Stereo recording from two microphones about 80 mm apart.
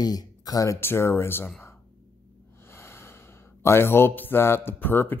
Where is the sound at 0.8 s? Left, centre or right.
Left.